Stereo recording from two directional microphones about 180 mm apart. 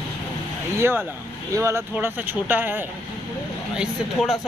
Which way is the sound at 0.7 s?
15° right (ahead or behind).